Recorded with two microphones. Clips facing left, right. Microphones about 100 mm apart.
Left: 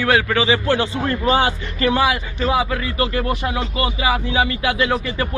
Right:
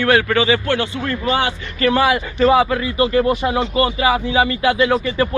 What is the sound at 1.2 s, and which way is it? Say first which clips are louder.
Speech: left 2 dB; 40° left (ahead or behind).